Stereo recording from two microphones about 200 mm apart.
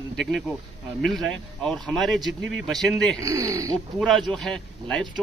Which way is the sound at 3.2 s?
15° right (ahead or behind).